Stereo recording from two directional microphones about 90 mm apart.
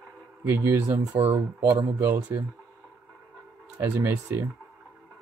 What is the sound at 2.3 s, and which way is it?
Speech, 40° right (ahead or behind).